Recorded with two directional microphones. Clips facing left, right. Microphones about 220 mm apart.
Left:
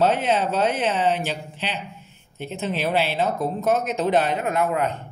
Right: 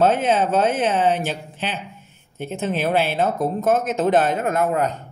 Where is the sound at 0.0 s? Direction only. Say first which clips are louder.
Right 3 dB; 50° right (ahead or behind).